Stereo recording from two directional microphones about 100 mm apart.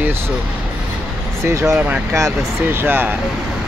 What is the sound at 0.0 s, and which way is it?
Vehicle, 25° right (ahead or behind).